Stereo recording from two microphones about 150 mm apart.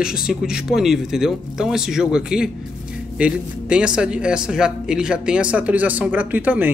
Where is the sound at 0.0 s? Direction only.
5° right (ahead or behind).